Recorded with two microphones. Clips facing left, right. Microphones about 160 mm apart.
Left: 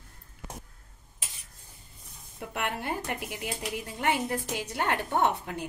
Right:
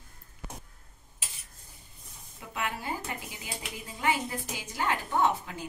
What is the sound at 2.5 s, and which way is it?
Speech, 65° left (ahead or behind).